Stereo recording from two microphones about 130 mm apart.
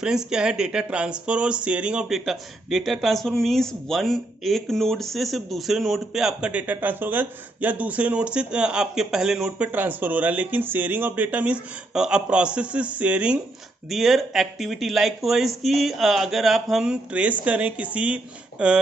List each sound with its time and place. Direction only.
0.0 s speech: 5° right (ahead or behind)